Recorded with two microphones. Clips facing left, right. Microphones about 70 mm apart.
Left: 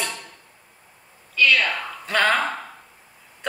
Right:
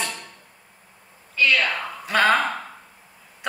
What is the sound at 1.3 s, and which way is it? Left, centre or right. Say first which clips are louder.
Speech: left 1 dB; right.